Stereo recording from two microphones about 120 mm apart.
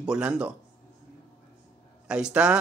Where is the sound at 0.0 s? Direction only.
5° right (ahead or behind).